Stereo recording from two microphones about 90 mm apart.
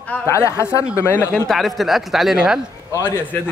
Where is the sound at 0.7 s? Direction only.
35° left (ahead or behind).